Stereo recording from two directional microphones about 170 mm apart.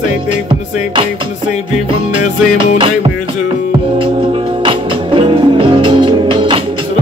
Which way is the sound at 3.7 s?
30° right (ahead or behind).